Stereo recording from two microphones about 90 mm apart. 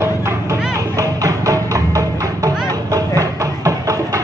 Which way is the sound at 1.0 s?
40° right (ahead or behind).